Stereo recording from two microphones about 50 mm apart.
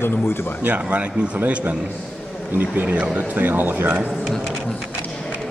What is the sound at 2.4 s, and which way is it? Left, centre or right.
Speech, right.